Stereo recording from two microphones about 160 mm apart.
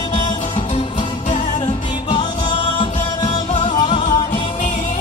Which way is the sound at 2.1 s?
30° left (ahead or behind).